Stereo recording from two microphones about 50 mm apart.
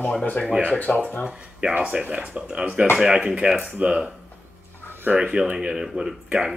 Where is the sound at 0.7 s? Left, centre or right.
Left.